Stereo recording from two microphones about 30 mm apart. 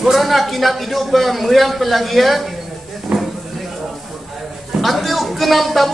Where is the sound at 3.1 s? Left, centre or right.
Right.